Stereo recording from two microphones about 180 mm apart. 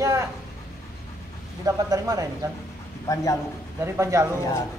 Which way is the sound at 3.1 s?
15° left (ahead or behind).